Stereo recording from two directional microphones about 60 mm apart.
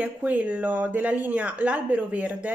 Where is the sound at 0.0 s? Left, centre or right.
Right.